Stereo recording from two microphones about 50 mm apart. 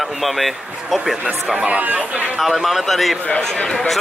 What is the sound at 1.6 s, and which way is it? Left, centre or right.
Speech, right.